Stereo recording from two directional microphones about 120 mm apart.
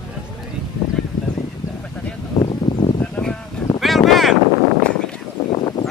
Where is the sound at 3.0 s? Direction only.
5° left (ahead or behind).